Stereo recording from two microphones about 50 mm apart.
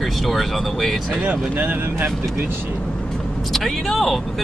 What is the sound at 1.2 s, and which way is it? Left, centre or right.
Speech, right.